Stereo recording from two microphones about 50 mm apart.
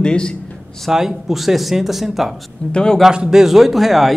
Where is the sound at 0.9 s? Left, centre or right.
Centre.